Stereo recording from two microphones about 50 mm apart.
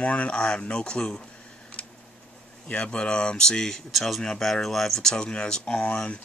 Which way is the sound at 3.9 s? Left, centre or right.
Centre.